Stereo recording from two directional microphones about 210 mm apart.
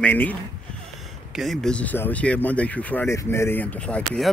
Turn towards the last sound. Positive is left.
turn(degrees=5)  # may be behind; listen again after turning